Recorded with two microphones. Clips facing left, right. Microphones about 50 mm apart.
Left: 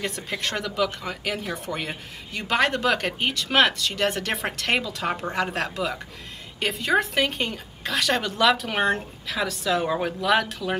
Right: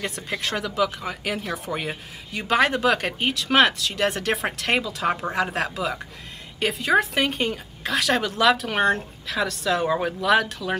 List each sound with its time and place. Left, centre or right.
0.0 s speech: centre